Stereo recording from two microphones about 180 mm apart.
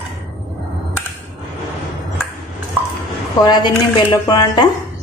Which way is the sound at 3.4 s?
25° left (ahead or behind).